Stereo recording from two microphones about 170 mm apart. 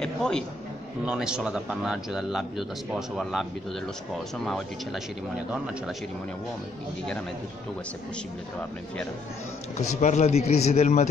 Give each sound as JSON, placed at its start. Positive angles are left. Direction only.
{"t": 0.0, "sound": "a sound", "side_deg": 5}
{"t": 1.0, "sound": "speech", "side_deg": -5}
{"t": 4.5, "sound": "speech", "side_deg": 0}
{"t": 9.8, "sound": "speech", "side_deg": 45}